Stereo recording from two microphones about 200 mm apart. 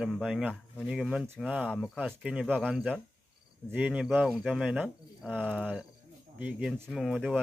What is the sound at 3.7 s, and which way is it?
Speech, 5° right (ahead or behind).